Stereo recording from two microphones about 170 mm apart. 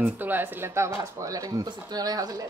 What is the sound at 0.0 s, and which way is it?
Speech, 10° right (ahead or behind).